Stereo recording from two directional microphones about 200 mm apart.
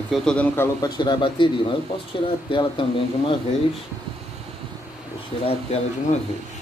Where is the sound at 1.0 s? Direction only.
25° left (ahead or behind).